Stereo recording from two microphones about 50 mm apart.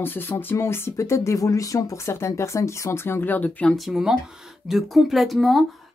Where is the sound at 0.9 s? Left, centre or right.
Left.